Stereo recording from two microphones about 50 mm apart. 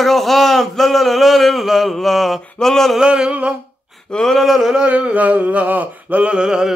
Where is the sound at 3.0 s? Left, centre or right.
Centre.